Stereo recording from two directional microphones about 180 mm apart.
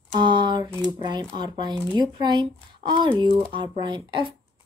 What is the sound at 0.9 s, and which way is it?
Speech, 25° right (ahead or behind).